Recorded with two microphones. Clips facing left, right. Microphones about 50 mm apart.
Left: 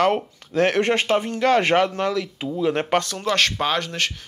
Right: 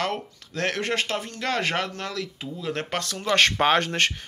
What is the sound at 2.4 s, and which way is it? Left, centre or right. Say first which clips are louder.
Speech: left 10 dB; left.